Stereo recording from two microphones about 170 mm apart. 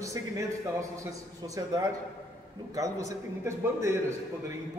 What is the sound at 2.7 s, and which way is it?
Speech, 20° right (ahead or behind).